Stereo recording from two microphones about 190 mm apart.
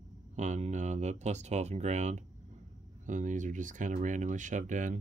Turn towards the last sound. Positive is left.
turn(degrees=-40)  # may be behind; listen again after turning